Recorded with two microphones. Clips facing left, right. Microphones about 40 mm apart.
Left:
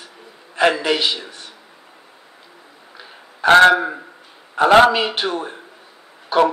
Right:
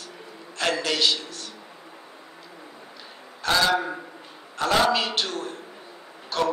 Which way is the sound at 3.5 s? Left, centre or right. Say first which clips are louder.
Left 11 dB; left.